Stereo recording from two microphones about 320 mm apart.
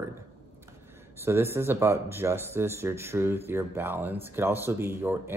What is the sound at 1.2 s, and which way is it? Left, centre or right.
Speech, centre.